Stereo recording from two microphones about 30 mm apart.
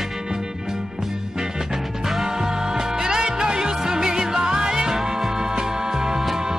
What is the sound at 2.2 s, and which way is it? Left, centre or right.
Music, centre.